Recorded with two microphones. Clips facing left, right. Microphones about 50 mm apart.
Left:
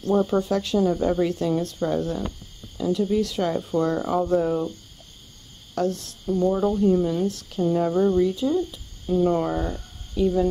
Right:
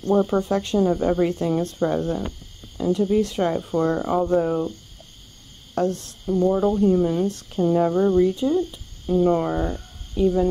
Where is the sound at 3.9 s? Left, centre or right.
Centre.